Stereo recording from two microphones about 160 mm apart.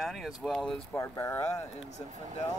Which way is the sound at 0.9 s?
15° left (ahead or behind).